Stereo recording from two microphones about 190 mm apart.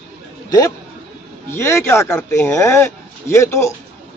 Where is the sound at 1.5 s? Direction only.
15° left (ahead or behind).